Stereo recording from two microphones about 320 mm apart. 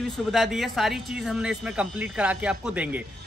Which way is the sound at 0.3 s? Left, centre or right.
Centre.